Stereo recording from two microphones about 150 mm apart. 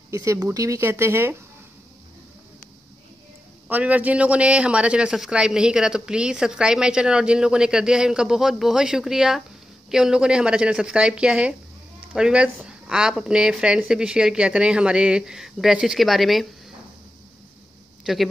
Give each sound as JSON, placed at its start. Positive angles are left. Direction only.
{"t": 0.1, "sound": "speech", "side_deg": -20}
{"t": 3.6, "sound": "a man's voice", "side_deg": -10}